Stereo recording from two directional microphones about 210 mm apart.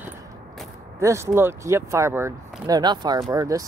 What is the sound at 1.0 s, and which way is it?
Speech, 10° right (ahead or behind).